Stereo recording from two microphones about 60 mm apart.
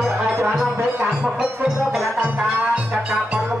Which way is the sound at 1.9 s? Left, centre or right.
Centre.